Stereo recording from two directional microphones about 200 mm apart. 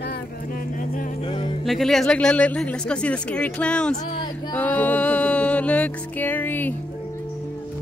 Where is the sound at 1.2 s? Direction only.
25° left (ahead or behind).